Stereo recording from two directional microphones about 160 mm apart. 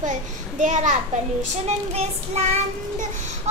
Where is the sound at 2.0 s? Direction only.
40° right (ahead or behind).